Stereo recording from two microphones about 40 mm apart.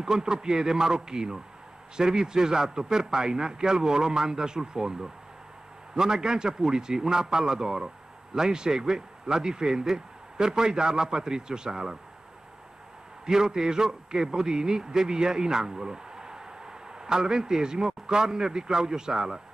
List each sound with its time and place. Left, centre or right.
0.0 s a man's voice: centre
13.2 s a man's voice: centre